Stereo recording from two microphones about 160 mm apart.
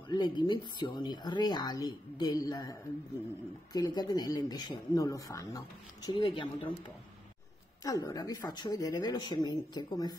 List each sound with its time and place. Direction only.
0.1 s speech: 25° left (ahead or behind)
7.8 s speech: 20° left (ahead or behind)